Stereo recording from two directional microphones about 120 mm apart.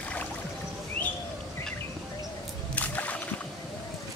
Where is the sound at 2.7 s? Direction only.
15° left (ahead or behind).